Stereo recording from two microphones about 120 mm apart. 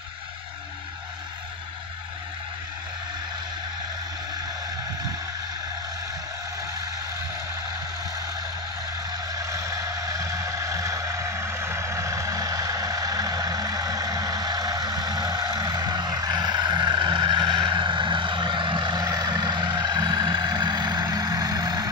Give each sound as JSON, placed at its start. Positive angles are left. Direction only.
{"t": 9.3, "sound": "music", "side_deg": -30}